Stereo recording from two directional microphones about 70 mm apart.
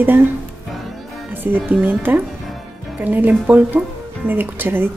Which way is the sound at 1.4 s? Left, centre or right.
Right.